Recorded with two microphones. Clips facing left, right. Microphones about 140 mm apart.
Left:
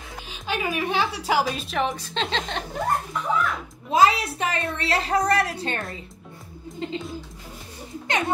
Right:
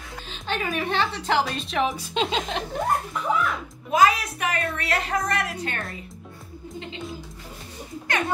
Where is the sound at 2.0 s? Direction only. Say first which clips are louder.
Right 2 dB; 10° right (ahead or behind).